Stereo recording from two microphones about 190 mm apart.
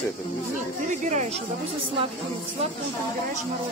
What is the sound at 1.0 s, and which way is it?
Speech, 40° right (ahead or behind).